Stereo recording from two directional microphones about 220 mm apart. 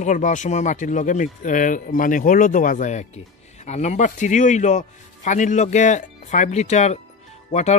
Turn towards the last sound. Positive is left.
turn(degrees=30)  # may be behind; listen again after turning